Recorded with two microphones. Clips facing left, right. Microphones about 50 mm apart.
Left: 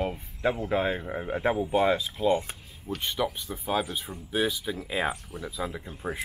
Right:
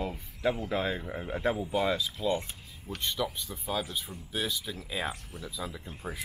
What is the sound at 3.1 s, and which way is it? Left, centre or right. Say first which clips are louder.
Speech: left 4 dB; centre.